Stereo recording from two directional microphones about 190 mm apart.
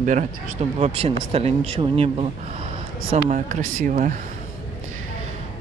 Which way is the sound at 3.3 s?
45° right (ahead or behind).